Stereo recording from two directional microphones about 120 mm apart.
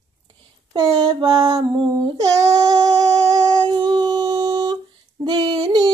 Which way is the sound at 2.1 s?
30° right (ahead or behind).